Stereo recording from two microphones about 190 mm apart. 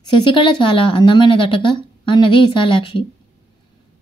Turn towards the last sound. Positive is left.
turn(degrees=25)  # may be behind; listen again after turning